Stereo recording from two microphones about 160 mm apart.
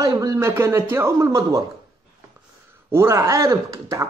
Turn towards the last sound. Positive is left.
turn(degrees=-20)  # may be behind; listen again after turning